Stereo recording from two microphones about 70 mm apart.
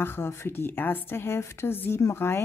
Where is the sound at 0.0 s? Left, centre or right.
Left.